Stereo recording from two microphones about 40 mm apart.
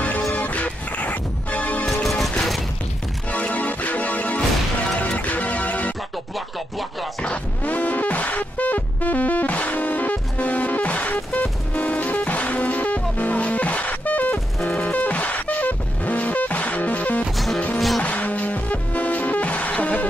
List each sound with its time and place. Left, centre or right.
0.3 s music: left
2.0 s music: centre
3.3 s music: left
6.3 s music: centre
7.6 s music: left
17.7 s music: centre
18.0 s music: left